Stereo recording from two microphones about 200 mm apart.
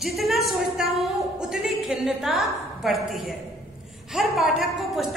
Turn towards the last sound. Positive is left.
turn(degrees=0)  # may be behind; listen again after turning